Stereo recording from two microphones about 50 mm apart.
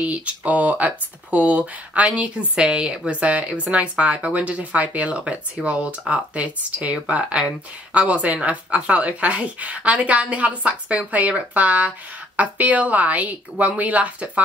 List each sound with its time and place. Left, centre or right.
0.0 s speech: right